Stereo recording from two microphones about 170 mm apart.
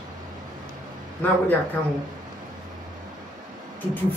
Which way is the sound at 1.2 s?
10° left (ahead or behind).